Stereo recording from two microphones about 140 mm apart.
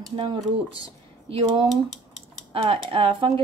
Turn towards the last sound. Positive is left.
turn(degrees=-40)  # may be behind; listen again after turning